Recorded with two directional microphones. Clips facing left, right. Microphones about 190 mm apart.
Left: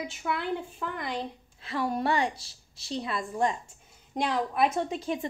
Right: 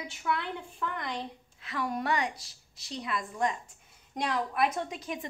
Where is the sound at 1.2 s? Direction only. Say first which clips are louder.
Left 4 dB; 30° left (ahead or behind).